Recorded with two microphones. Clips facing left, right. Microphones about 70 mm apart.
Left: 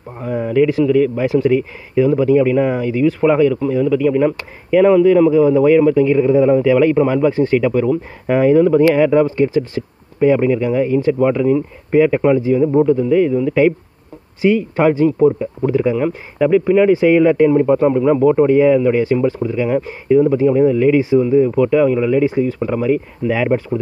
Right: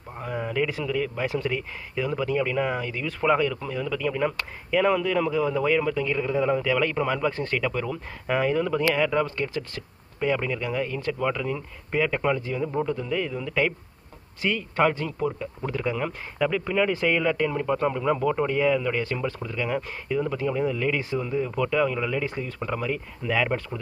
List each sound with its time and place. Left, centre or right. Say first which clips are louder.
0.5 s speech: left 15 dB; centre